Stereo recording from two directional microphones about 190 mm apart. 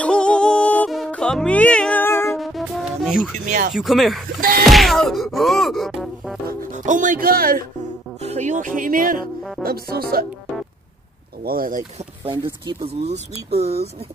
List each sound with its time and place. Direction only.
0.0 s music: 5° left (ahead or behind)
2.3 s music: centre (ahead or behind)
3.4 s speech: 40° right (ahead or behind)
3.7 s speech: centre (ahead or behind)
4.6 s music: centre (ahead or behind)
6.4 s speech: 40° right (ahead or behind)
8.2 s speech: 35° right (ahead or behind); by 10.2 s 50° right (ahead or behind)
11.4 s speech: 50° right (ahead or behind)
12.8 s speech: 35° right (ahead or behind)